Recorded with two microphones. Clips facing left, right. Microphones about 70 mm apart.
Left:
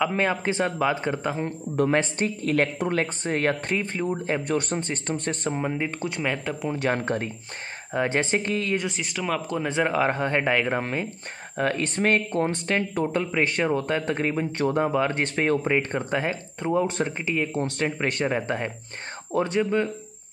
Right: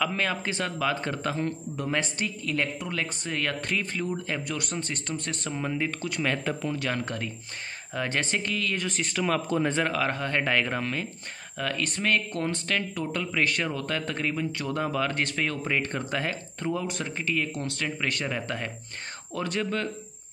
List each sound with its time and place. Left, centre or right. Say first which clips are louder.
0.0 s speech: left 4 dB; left
1.8 s speech: left 8 dB; left
6.2 s speech: even; centre
6.7 s speech: left 5 dB; left
9.0 s speech: right 1 dB; centre
9.8 s speech: left 4 dB; left
16.8 s speech: left 5 dB; left